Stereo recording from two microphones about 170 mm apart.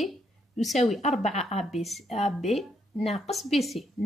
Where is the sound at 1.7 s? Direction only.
Centre (ahead or behind).